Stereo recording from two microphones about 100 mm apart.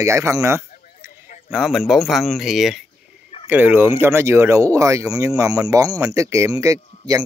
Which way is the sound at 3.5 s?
20° right (ahead or behind).